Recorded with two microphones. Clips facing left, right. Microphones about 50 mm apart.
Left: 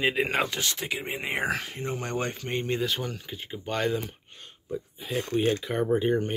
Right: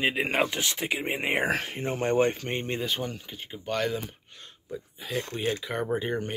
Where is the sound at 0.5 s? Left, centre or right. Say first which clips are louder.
Right 1 dB; right.